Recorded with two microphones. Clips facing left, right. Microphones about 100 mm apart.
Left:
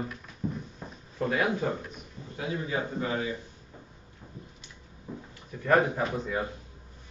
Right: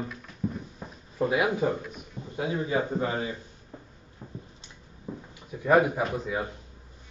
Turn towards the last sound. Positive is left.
turn(degrees=-5)  # may be behind; listen again after turning